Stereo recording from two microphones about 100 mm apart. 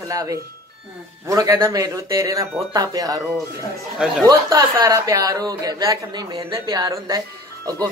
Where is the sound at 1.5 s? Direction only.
45° right (ahead or behind).